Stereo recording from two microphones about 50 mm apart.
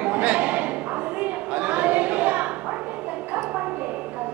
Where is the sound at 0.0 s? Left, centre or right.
Right.